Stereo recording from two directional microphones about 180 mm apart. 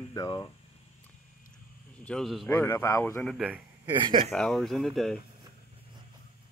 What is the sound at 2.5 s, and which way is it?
Speech, 10° left (ahead or behind).